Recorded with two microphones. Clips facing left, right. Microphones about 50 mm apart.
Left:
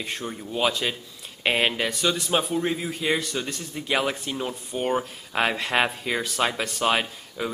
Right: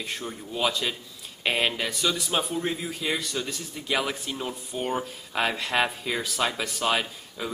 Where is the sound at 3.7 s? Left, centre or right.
Centre.